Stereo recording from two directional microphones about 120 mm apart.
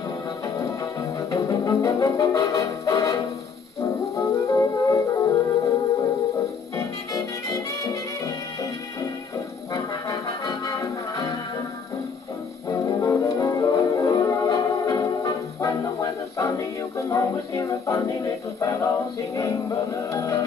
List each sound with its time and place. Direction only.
1.3 s brass instrument: 30° left (ahead or behind)
3.8 s music: 25° left (ahead or behind)
6.8 s music: 25° left (ahead or behind)
9.8 s brass instrument: 25° left (ahead or behind)
12.6 s music: 25° left (ahead or behind)